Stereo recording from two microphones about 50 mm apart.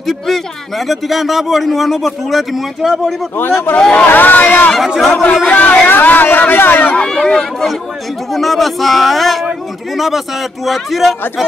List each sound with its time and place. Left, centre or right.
0.0 s speech: centre
3.3 s speech: left
4.7 s speech: centre
5.5 s speech: left
5.9 s speech: left
7.0 s speech: centre
8.3 s speech: centre